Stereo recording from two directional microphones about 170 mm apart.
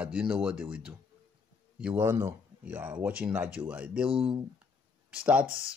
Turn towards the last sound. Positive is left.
turn(degrees=-5)  # may be behind; listen again after turning